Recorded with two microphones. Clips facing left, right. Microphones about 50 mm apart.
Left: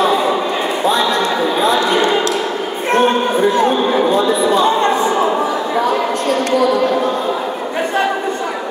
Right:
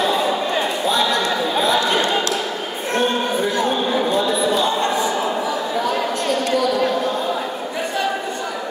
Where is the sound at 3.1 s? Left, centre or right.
Left.